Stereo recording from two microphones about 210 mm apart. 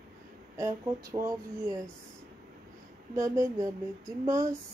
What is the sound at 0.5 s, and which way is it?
Speech, 15° right (ahead or behind).